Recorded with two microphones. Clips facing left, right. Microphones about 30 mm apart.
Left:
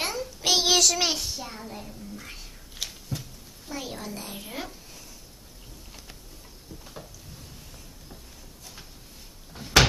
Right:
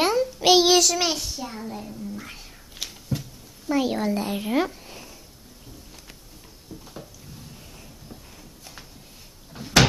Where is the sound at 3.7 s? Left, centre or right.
Right.